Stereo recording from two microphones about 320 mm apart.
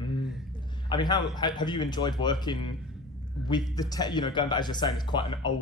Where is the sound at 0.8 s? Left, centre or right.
Centre.